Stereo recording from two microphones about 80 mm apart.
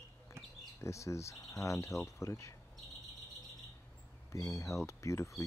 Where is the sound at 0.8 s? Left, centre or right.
Left.